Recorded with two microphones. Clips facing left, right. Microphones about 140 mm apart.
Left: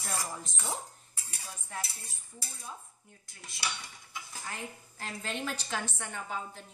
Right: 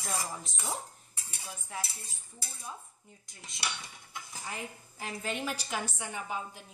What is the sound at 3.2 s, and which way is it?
Cutlery, 20° right (ahead or behind).